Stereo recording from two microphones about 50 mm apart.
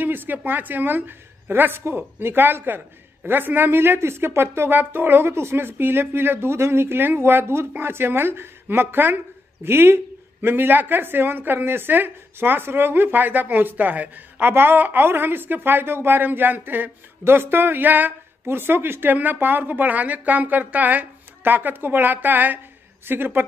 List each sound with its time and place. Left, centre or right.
0.0 s a sound: right
0.5 s a woman's voice: right
14.5 s a woman's voice: right
17.2 s a woman's voice: right